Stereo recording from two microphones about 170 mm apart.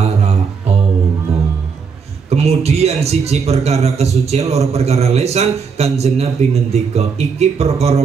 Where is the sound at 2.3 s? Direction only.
40° right (ahead or behind).